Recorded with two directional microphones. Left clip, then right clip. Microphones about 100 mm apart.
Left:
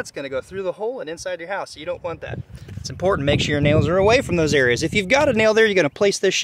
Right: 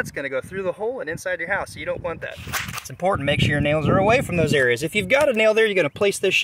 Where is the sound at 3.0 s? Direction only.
45° left (ahead or behind).